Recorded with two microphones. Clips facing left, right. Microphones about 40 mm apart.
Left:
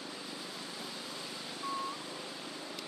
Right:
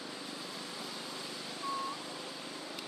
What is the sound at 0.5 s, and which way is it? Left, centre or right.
Vehicle, centre.